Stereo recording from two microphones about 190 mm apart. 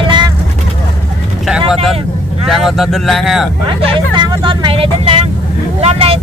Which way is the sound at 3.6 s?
25° right (ahead or behind).